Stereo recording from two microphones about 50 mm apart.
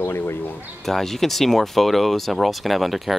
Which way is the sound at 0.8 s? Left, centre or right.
Centre.